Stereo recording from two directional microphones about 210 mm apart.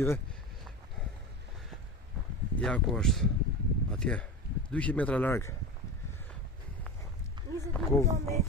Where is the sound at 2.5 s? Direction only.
5° left (ahead or behind).